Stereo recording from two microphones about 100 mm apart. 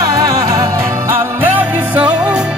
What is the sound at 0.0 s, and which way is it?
Music, 35° right (ahead or behind).